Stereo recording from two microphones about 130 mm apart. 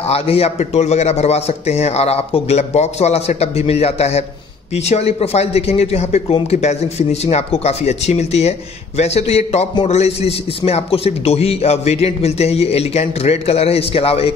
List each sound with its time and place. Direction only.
0.0 s a man's voice: 50° left (ahead or behind)